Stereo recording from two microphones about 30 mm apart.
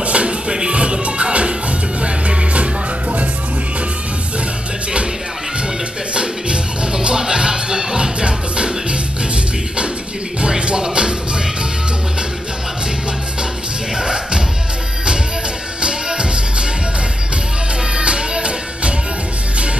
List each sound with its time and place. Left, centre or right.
0.0 s music: right
0.5 s music: right
6.1 s music: right
10.8 s music: right
13.9 s music: right
15.8 s music: right
17.9 s music: right